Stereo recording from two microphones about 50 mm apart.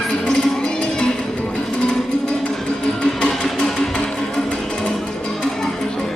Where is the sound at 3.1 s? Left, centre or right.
Centre.